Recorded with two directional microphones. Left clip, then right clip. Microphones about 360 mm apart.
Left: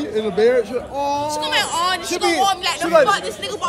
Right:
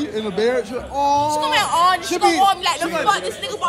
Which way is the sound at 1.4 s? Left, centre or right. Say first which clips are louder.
Right 3 dB; centre.